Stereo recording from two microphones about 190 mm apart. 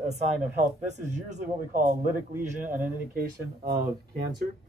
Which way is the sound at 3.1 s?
50° right (ahead or behind).